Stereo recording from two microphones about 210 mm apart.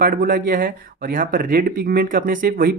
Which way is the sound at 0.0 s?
45° right (ahead or behind).